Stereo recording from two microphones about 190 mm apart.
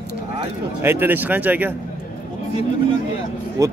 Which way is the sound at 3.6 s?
15° right (ahead or behind).